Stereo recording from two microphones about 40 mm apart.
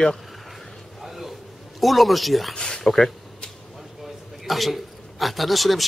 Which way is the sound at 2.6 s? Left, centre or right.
Centre.